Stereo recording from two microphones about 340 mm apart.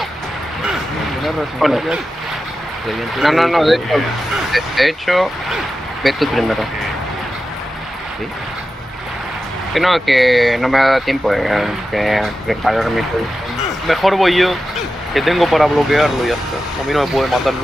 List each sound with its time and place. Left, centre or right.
1.2 s speech: centre
9.8 s speech: centre